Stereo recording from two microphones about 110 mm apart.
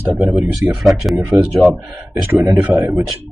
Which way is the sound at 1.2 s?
15° right (ahead or behind).